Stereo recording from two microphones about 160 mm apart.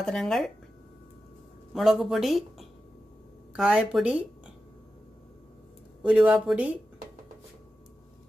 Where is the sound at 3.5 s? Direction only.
5° right (ahead or behind).